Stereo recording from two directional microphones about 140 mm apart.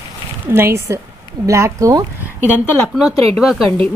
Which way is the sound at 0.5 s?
20° right (ahead or behind).